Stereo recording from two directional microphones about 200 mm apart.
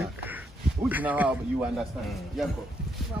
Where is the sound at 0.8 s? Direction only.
10° right (ahead or behind).